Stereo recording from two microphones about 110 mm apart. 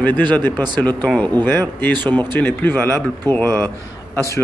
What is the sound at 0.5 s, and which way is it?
Speech, 40° right (ahead or behind).